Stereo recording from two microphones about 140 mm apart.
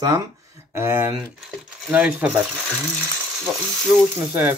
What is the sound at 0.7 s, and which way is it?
Speech, 15° right (ahead or behind).